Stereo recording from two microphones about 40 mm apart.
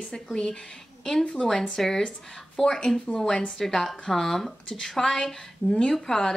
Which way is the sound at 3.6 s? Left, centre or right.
Centre.